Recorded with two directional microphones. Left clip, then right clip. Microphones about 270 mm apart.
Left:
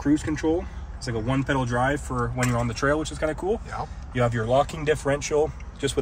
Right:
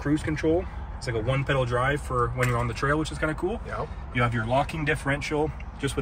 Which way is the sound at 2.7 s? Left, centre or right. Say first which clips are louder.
Left 2 dB; left.